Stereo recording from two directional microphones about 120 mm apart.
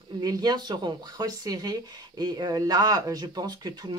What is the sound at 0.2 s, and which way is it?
Speech, 35° right (ahead or behind).